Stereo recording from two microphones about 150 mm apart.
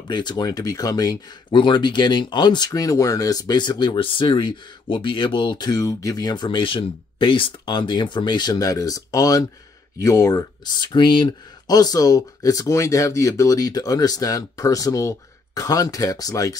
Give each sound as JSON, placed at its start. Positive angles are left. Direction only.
{"t": 0.1, "sound": "speech", "side_deg": 30}